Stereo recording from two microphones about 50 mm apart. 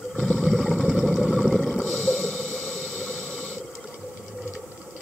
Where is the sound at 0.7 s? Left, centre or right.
Centre.